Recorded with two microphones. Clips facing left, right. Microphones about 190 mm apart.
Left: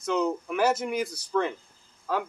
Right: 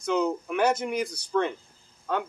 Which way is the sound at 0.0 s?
Centre (ahead or behind).